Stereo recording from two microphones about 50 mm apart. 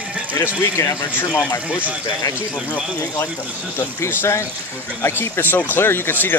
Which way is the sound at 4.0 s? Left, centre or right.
Left.